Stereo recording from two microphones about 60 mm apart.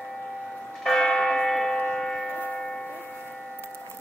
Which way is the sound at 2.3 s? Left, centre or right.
Left.